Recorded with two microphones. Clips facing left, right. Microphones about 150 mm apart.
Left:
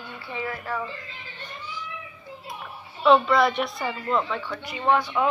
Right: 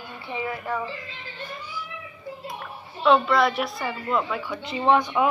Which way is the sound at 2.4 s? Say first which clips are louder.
Right 2 dB; centre (ahead or behind).